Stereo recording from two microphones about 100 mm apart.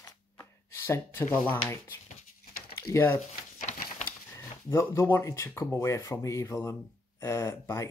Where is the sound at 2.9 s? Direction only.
30° left (ahead or behind).